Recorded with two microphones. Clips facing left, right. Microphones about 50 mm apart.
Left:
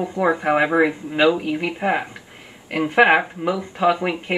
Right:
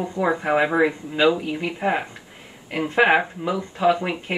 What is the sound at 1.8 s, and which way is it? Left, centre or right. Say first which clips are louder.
Speech: left 2 dB; centre.